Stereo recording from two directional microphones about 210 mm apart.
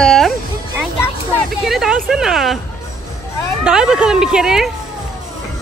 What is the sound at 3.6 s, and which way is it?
Speech, 5° right (ahead or behind).